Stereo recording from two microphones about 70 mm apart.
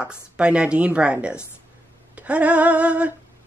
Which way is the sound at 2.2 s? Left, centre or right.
Centre.